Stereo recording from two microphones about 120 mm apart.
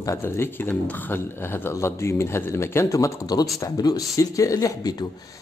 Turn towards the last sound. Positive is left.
turn(degrees=35)  # may be behind; listen again after turning